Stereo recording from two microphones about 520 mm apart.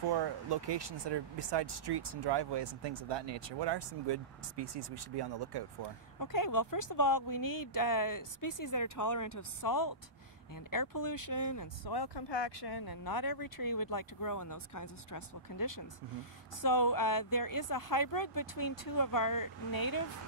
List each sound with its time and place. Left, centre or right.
0.1 s speech: right
6.1 s speech: left
9.3 s speech: left